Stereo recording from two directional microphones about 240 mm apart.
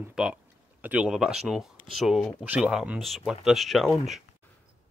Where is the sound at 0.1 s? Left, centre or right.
Centre.